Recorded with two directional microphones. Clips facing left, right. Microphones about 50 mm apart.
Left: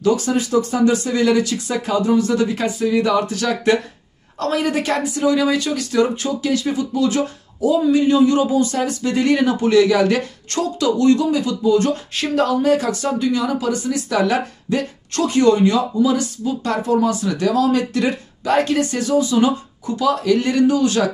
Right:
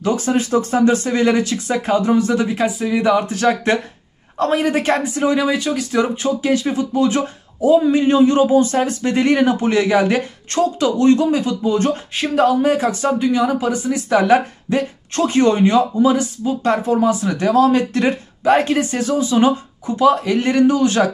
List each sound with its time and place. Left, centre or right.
0.0 s speech: right